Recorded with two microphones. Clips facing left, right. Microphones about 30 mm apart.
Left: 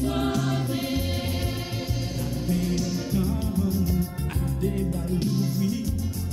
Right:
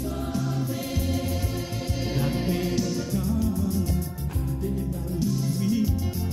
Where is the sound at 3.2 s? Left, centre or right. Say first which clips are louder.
Right 2 dB; left.